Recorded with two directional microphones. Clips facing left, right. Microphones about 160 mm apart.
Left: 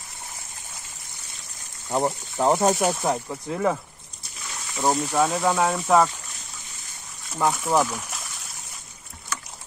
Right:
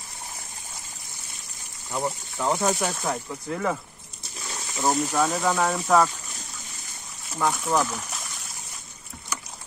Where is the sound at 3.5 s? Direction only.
10° left (ahead or behind).